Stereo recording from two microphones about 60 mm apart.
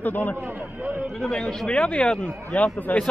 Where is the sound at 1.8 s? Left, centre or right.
Centre.